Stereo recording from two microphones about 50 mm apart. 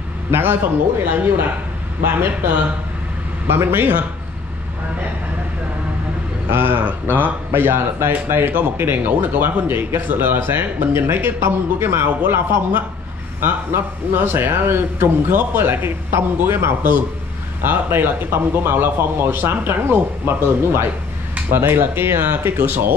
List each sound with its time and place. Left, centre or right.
0.3 s speech: right
6.5 s speech: right
6.8 s speech: right
14.1 s speech: right